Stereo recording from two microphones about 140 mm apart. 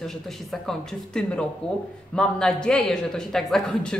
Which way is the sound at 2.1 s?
5° left (ahead or behind).